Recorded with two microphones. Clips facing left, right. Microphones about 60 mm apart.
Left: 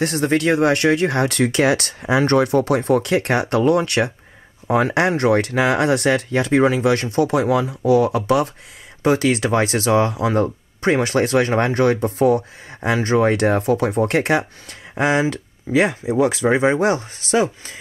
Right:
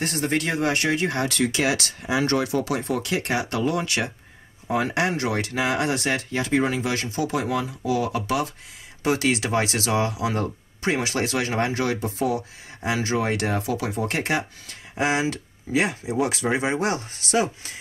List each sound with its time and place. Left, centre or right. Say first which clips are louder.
0.0 s speech: left 6 dB; left
9.0 s speech: left 5 dB; left
15.0 s speech: left 5 dB; left